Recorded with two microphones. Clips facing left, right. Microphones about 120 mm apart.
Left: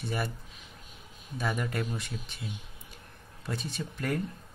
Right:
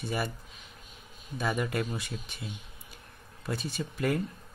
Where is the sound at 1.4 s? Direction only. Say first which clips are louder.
Right 2 dB; 5° right (ahead or behind).